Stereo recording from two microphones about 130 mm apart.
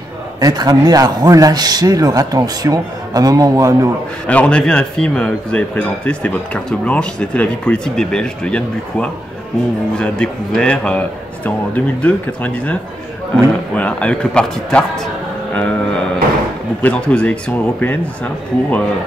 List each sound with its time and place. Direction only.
0.4 s speech: 30° right (ahead or behind)
4.3 s a man's voice: 10° left (ahead or behind)
13.7 s a man's voice: 10° left (ahead or behind)